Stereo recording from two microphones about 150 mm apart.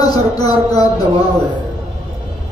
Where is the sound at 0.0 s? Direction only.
25° left (ahead or behind).